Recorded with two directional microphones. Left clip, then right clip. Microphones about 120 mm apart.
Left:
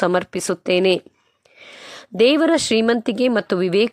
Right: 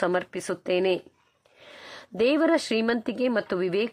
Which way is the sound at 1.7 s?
30° left (ahead or behind).